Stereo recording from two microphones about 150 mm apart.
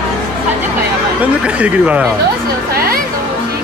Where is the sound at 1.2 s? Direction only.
10° right (ahead or behind).